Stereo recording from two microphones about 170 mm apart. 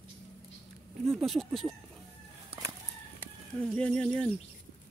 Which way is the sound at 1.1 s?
Centre (ahead or behind).